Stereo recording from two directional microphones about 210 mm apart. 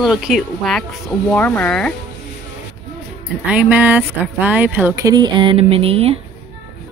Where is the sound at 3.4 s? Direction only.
5° right (ahead or behind); by 6.1 s 25° right (ahead or behind).